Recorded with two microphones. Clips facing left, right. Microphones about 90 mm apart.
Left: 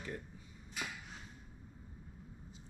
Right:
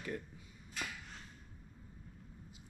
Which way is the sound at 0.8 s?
5° left (ahead or behind).